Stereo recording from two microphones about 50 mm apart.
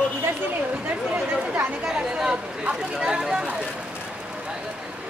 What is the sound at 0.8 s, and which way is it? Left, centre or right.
Speech, right.